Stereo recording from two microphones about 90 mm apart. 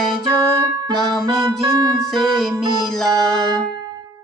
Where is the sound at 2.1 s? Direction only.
5° left (ahead or behind).